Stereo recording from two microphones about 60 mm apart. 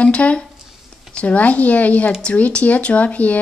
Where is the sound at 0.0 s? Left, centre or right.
Left.